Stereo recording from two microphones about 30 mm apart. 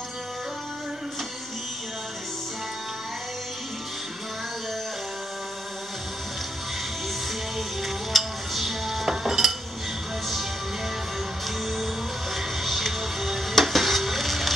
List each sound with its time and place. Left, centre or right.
7.5 s music: centre
9.1 s cutlery: centre
12.4 s music: centre